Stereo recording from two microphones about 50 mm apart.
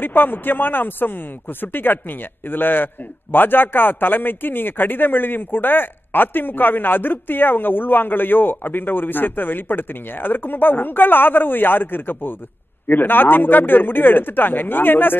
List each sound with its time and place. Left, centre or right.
0.0 s speech: left